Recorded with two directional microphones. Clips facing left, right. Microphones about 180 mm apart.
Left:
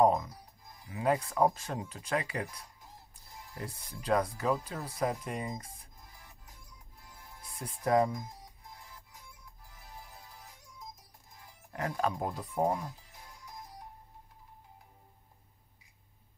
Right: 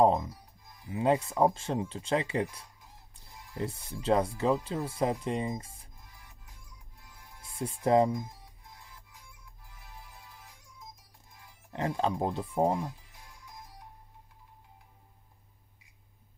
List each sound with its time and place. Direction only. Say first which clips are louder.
0.0 s speech: right 2 dB; 25° right (ahead or behind)
7.5 s speech: right 3 dB; 25° right (ahead or behind)
9.8 s music: left 1 dB; 40° left (ahead or behind)
11.7 s speech: right 3 dB; 25° right (ahead or behind)